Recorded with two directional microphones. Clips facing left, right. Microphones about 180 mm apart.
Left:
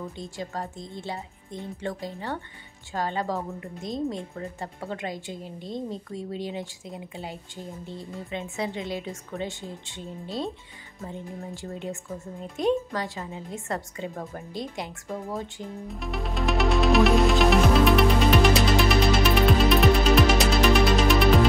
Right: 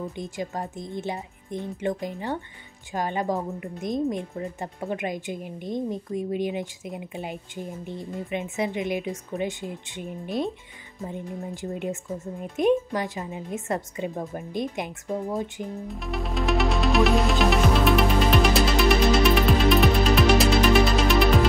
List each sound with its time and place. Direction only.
0.1 s a woman's voice: 20° right (ahead or behind)
15.9 s music: centre (ahead or behind)